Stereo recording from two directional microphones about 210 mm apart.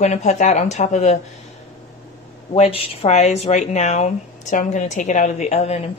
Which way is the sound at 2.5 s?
25° left (ahead or behind).